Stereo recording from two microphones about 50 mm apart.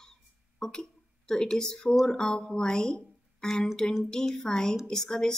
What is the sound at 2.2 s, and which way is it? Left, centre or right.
Speech, centre.